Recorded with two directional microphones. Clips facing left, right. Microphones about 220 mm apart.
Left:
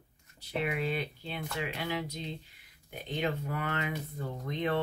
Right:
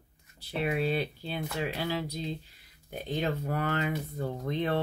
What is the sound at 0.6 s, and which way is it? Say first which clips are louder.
Speech: right 3 dB; 35° right (ahead or behind).